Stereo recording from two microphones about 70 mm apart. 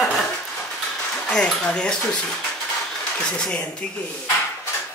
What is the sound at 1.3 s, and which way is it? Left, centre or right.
Speech, centre.